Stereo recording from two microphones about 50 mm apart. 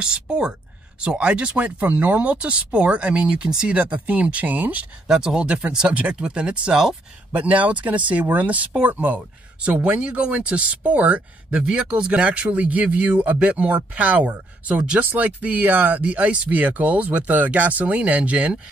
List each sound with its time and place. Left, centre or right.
0.0 s a woman's voice: centre; by 2.3 s right
2.3 s speech: right
3.7 s speech: right
5.0 s speech: centre
7.3 s speech: right
16.0 s speech: right